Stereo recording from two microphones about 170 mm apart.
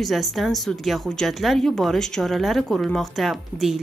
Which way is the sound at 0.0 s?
Centre (ahead or behind).